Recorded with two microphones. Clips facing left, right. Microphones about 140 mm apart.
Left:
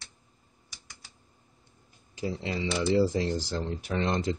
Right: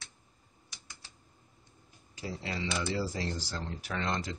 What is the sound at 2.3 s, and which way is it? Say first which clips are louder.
Speech: left 4 dB; 20° left (ahead or behind).